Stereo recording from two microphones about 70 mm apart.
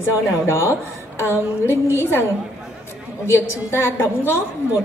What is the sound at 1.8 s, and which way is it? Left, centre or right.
Speech, left.